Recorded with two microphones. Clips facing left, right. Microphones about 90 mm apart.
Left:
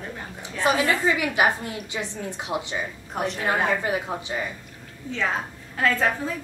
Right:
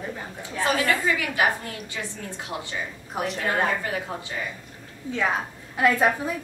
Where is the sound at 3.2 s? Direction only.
5° right (ahead or behind).